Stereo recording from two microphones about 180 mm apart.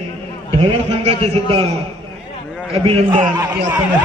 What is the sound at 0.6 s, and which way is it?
A man's voice, 35° right (ahead or behind).